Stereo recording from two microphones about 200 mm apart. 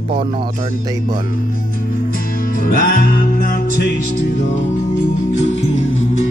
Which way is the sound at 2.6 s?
45° left (ahead or behind).